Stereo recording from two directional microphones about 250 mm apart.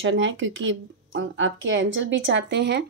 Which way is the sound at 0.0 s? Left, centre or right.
Right.